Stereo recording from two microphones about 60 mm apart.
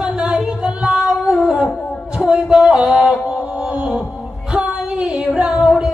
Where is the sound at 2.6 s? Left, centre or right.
Centre.